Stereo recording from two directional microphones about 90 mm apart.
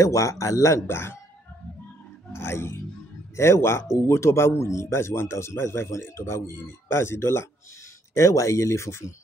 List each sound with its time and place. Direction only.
0.0 s speech: 35° left (ahead or behind)
2.3 s speech: 30° left (ahead or behind)